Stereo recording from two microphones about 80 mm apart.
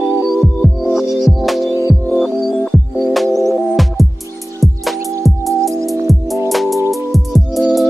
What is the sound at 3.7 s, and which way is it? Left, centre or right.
Music, centre.